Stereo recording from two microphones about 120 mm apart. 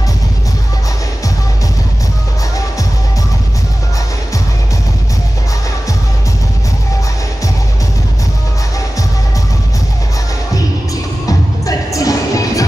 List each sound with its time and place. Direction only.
11.2 s music: 30° left (ahead or behind)